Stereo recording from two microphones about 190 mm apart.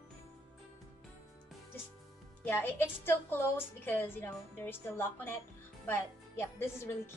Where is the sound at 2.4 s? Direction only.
10° left (ahead or behind).